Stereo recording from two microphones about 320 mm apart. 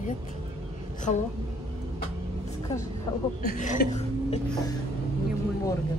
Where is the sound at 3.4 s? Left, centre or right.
Left.